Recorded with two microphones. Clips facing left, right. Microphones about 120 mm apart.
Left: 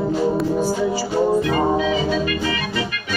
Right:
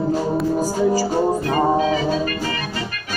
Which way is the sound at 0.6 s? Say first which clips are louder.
Right 2 dB; 40° right (ahead or behind).